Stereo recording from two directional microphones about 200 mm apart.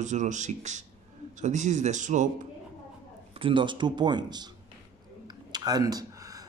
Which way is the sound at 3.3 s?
25° right (ahead or behind).